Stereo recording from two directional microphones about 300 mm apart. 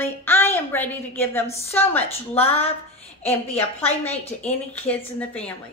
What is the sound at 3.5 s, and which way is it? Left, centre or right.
A woman's voice, centre.